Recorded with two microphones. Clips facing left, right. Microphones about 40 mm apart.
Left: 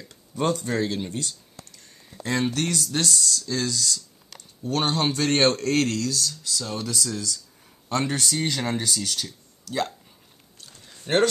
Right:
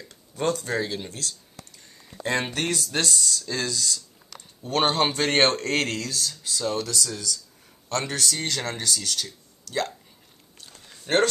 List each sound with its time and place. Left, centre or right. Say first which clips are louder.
0.1 s speech: left 1 dB; centre
0.7 s speech: left 2 dB; centre
2.2 s speech: left 1 dB; right
4.6 s speech: right 1 dB; right
6.8 s speech: even; centre
11.1 s speech: even; centre